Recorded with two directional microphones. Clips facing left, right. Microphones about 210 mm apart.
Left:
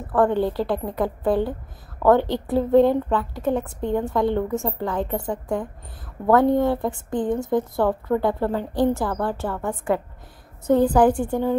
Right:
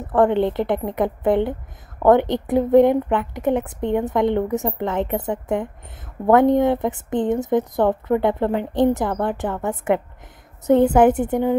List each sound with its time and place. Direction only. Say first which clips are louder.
0.0 s speech: right 3 dB; 20° right (ahead or behind)